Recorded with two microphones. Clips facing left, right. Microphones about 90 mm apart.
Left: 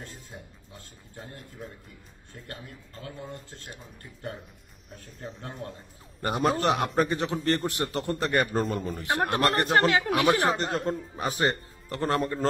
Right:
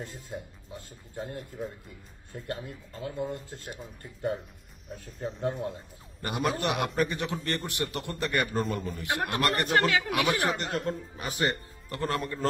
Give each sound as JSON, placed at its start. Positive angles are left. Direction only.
{"t": 1.6, "sound": "speech", "side_deg": 0}
{"t": 2.3, "sound": "speech", "side_deg": -35}
{"t": 3.3, "sound": "speech", "side_deg": 0}
{"t": 6.2, "sound": "a man's voice", "side_deg": 35}